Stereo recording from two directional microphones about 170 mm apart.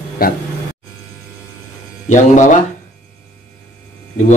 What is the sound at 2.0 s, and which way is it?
Speech, 45° left (ahead or behind).